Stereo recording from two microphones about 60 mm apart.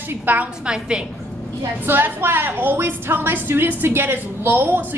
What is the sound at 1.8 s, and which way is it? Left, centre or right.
A woman's voice, right.